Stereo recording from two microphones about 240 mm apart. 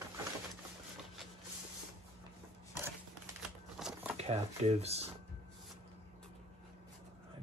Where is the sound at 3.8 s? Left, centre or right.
Centre.